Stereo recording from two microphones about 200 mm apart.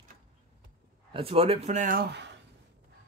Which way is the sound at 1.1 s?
25° right (ahead or behind).